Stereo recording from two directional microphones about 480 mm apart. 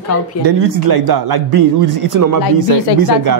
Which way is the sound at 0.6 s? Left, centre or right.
Right.